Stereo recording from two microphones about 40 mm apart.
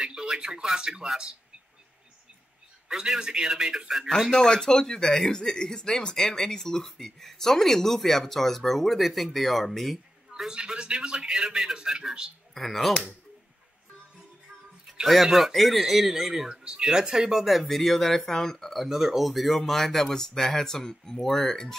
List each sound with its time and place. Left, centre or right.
0.0 s a man's voice: right
2.9 s a man's voice: centre
4.3 s speech: centre
10.3 s a man's voice: centre
12.5 s speech: centre
14.9 s a sound: centre
15.3 s a man's voice: centre
16.4 s speech: right; by 18.9 s centre
18.9 s speech: centre